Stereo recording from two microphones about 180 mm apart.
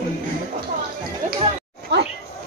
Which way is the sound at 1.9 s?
75° right (ahead or behind).